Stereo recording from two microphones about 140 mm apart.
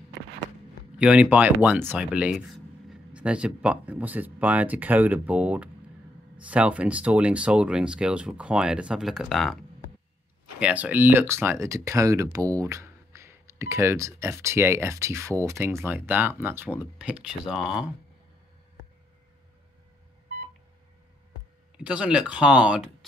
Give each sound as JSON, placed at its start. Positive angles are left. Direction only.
{"t": 0.9, "sound": "speech", "side_deg": -10}
{"t": 10.6, "sound": "speech", "side_deg": -10}
{"t": 21.7, "sound": "speech", "side_deg": -5}